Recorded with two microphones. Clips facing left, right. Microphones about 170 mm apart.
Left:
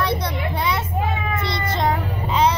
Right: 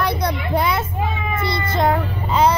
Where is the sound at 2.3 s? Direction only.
5° right (ahead or behind).